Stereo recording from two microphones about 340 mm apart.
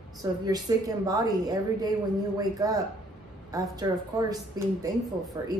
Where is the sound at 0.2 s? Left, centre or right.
Centre.